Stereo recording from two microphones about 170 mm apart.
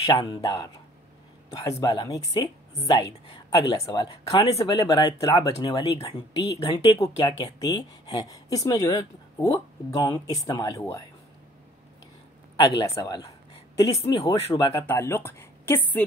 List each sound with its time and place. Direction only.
0.1 s a woman's voice: 20° left (ahead or behind)
1.7 s a woman's voice: 25° left (ahead or behind)
12.6 s a woman's voice: 20° left (ahead or behind)
14.9 s speech: 15° left (ahead or behind)